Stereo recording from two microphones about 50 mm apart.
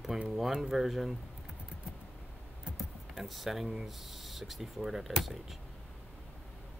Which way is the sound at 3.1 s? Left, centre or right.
Centre.